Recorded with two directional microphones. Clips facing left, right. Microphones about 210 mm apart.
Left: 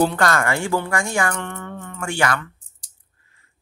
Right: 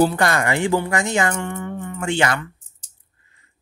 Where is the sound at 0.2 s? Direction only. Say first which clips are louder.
Right 1 dB; 15° right (ahead or behind).